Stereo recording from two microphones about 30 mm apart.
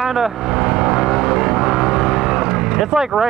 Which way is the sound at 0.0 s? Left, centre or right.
Centre.